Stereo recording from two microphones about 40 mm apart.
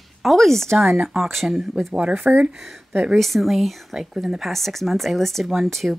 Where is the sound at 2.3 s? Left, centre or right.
Right.